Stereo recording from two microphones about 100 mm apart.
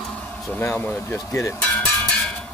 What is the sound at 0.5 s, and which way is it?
Speech, 20° left (ahead or behind).